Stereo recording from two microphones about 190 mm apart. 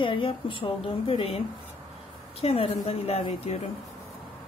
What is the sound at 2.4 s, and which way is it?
A woman's voice, 30° left (ahead or behind).